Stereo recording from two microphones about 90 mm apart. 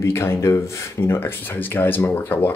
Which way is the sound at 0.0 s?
30° left (ahead or behind).